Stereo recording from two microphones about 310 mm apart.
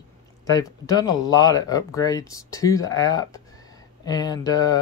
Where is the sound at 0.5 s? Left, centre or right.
Centre.